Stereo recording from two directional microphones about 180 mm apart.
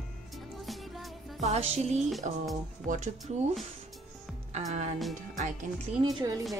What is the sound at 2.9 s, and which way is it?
Speech, 40° right (ahead or behind).